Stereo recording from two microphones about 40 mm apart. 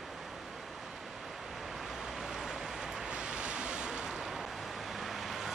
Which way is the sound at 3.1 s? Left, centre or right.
Right.